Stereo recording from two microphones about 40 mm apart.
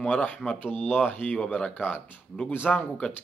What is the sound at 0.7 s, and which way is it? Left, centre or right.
Speech, left.